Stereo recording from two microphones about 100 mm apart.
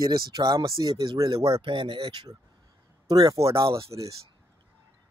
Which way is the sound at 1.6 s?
55° right (ahead or behind).